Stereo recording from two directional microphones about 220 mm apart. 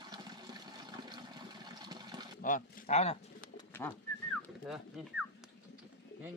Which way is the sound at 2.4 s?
30° left (ahead or behind).